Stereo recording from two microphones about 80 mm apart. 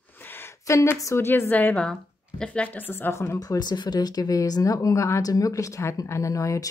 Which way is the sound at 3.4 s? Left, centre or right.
Left.